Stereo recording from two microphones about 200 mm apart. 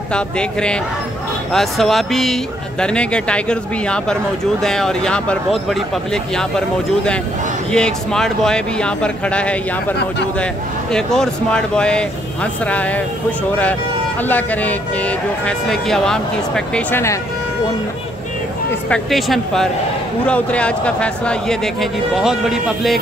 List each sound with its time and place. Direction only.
0.1 s speech: 5° left (ahead or behind)
7.7 s speech: 5° left (ahead or behind)
14.2 s speech: 10° left (ahead or behind)
18.7 s speech: 5° left (ahead or behind)